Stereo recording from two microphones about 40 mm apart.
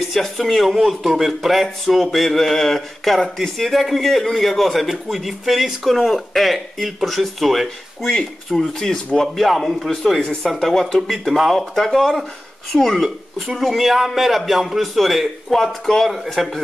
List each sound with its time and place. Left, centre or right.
0.1 s speech: centre
8.1 s speech: centre